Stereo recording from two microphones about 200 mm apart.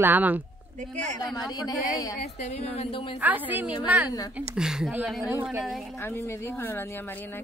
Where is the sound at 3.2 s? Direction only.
10° right (ahead or behind).